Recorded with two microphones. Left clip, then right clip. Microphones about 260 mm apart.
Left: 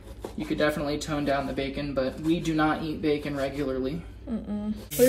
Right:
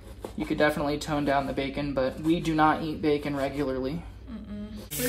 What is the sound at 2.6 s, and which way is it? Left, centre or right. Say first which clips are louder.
Speech: right 3 dB; right.